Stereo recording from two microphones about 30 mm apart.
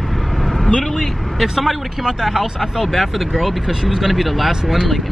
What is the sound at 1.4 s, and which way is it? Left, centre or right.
Speech, centre.